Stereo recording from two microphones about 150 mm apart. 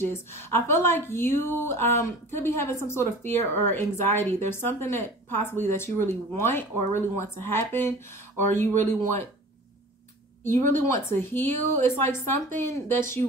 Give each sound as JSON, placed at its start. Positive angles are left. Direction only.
{"t": 0.3, "sound": "a woman's voice", "side_deg": 15}
{"t": 10.4, "sound": "a woman's voice", "side_deg": 15}